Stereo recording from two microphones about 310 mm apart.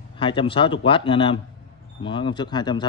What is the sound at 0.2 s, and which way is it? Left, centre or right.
Speech, centre.